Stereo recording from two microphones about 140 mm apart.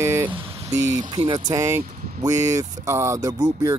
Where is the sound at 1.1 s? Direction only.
30° right (ahead or behind).